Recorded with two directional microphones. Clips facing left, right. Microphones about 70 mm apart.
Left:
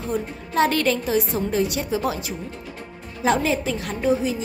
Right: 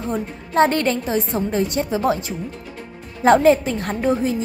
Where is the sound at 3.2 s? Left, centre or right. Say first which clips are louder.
Right 7 dB; right.